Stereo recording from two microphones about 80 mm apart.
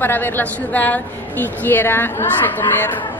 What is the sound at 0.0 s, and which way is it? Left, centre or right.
A woman's voice, left.